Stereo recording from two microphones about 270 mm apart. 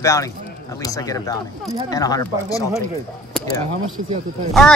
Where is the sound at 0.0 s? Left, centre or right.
Centre.